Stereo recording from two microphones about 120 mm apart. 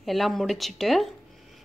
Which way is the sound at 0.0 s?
Centre (ahead or behind).